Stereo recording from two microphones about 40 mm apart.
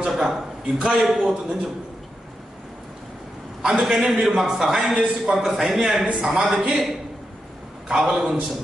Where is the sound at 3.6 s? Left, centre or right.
Centre.